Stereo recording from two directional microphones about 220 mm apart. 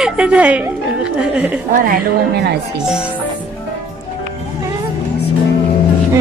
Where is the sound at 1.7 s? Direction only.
45° right (ahead or behind).